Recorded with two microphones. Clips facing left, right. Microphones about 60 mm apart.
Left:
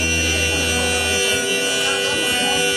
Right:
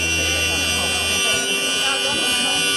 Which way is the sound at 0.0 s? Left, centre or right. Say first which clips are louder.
Left 2 dB; centre.